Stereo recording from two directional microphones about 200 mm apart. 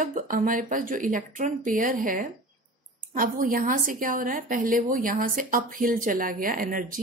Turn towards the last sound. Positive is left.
turn(degrees=-45)  # may be behind; listen again after turning